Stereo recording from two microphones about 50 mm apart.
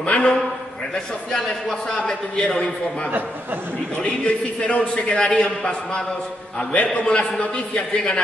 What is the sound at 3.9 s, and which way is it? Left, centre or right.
A man's voice, left.